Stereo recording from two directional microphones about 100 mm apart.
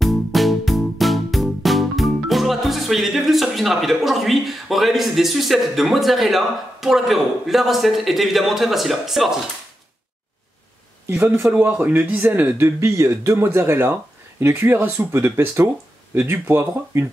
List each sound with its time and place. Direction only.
0.0 s music: centre (ahead or behind)
11.5 s speech: 15° right (ahead or behind)